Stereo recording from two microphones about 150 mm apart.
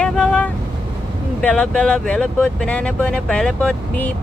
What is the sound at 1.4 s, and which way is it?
Speech, 5° left (ahead or behind).